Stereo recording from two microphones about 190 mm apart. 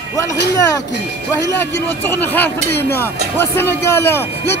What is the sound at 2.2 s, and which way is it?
Speech, 10° left (ahead or behind).